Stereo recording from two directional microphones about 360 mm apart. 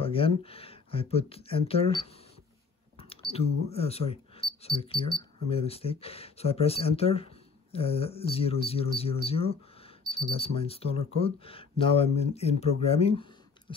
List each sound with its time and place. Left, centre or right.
0.0 s speech: centre
3.0 s speech: centre